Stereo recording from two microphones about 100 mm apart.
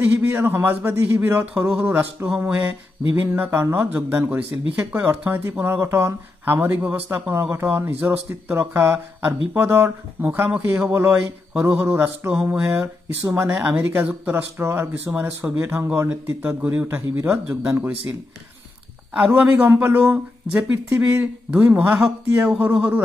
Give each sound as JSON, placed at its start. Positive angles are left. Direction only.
{"t": 0.3, "sound": "speech", "side_deg": -20}
{"t": 19.1, "sound": "speech", "side_deg": -15}